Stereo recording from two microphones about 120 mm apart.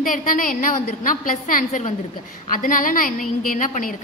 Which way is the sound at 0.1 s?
90° left.